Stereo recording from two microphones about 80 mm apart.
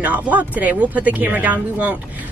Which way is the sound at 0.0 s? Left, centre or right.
Centre.